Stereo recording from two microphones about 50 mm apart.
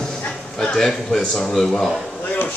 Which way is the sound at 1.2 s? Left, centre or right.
Centre.